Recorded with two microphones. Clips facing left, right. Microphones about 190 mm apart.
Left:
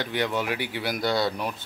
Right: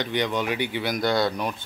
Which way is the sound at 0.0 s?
5° left (ahead or behind).